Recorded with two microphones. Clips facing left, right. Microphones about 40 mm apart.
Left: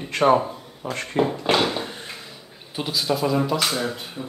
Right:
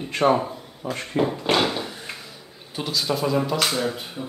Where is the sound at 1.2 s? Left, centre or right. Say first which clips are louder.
Left 1 dB; left.